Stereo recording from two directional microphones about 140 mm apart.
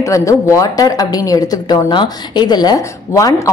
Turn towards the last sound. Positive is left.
turn(degrees=20)  # may be behind; listen again after turning